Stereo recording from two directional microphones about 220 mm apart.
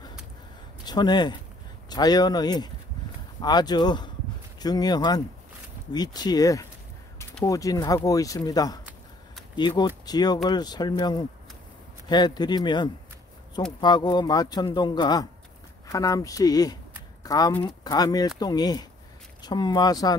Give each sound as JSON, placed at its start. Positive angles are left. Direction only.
{"t": 0.8, "sound": "speech", "side_deg": 20}